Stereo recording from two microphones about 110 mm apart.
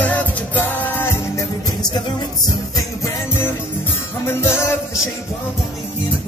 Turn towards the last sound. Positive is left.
turn(degrees=25)  # may be behind; listen again after turning